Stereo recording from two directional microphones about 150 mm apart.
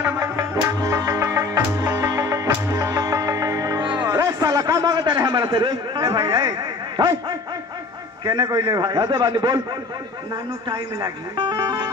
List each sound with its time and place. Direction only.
0.0 s music: 20° right (ahead or behind)
8.3 s a man's voice: 25° right (ahead or behind)
10.7 s a man's voice: 30° right (ahead or behind)